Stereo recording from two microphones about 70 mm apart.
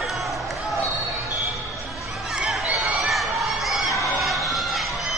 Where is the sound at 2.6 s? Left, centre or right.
Centre.